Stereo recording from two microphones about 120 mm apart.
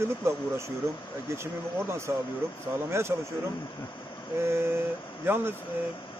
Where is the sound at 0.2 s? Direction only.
20° right (ahead or behind).